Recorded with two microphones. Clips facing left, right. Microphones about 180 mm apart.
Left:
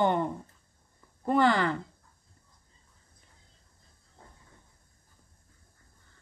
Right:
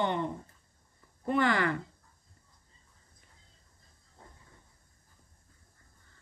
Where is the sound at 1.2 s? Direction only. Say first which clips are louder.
Left 3 dB; 30° left (ahead or behind).